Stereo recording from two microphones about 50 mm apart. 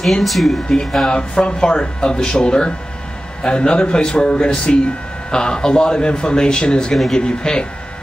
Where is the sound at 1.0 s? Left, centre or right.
Centre.